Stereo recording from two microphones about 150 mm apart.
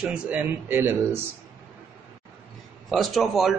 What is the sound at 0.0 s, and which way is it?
A man's voice, 10° right (ahead or behind).